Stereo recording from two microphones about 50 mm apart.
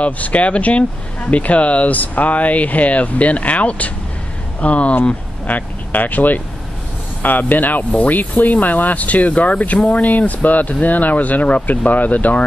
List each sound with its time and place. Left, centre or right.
0.0 s speech: left